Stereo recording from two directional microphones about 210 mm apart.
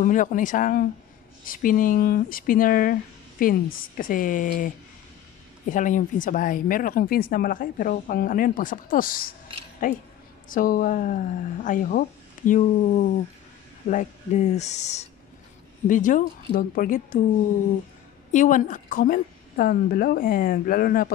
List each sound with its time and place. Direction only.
0.0 s speech: 40° left (ahead or behind)
18.3 s a woman's voice: 35° left (ahead or behind)